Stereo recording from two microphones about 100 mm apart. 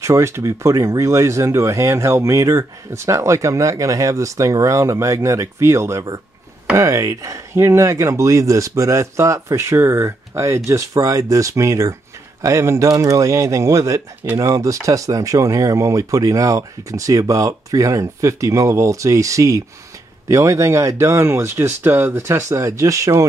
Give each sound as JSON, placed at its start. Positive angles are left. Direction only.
{"t": 0.0, "sound": "speech", "side_deg": -30}